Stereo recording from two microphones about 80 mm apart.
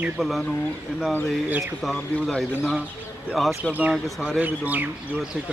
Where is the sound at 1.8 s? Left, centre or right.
Centre.